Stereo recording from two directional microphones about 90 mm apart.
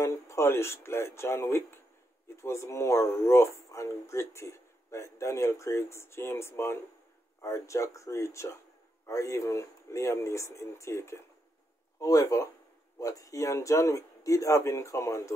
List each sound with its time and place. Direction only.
0.0 s speech: 30° left (ahead or behind)